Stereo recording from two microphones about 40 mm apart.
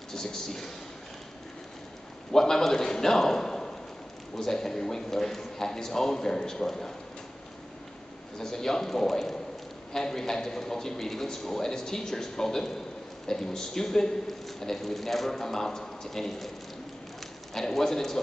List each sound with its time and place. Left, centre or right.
0.1 s a man's voice: centre
2.3 s a man's voice: centre
8.4 s a man's voice: centre
17.6 s a man's voice: centre